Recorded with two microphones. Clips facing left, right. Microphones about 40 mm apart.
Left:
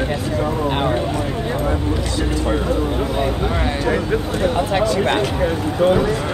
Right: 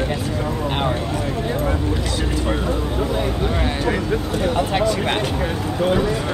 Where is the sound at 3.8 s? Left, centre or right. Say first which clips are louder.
Left 3 dB; centre.